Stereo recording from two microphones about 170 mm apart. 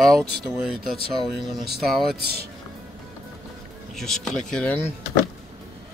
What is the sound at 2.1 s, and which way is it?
Speech, 65° right (ahead or behind).